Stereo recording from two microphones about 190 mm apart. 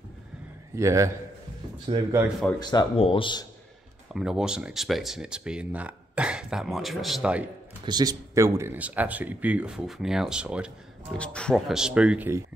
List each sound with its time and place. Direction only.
0.7 s speech: 15° right (ahead or behind)
2.6 s speech: 20° left (ahead or behind)
4.1 s speech: 5° right (ahead or behind)
7.8 s speech: 20° right (ahead or behind); by 10.7 s 5° right (ahead or behind)
11.1 s speech: 5° left (ahead or behind)